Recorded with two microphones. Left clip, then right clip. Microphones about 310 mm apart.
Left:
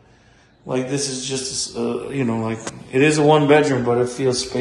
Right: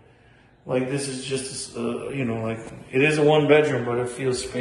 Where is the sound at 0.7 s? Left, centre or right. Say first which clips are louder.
Left 2 dB; centre.